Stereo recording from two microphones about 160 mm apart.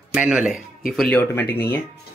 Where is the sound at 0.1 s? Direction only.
5° right (ahead or behind).